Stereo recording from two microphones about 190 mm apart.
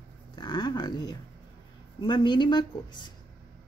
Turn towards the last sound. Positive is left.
turn(degrees=25)  # may be behind; listen again after turning